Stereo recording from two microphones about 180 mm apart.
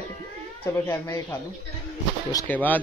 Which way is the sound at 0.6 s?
15° left (ahead or behind).